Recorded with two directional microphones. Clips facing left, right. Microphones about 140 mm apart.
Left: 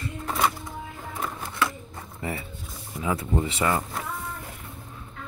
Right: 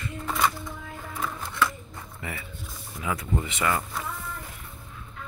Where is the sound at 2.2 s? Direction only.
30° left (ahead or behind).